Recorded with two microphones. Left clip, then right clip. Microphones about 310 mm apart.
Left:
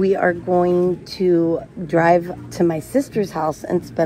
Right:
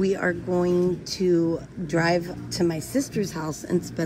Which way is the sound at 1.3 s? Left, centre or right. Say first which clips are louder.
Left 6 dB; left.